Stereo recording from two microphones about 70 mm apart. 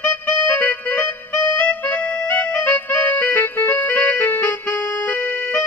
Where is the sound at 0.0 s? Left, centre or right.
Left.